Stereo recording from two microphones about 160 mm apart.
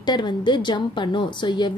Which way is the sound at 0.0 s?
25° left (ahead or behind).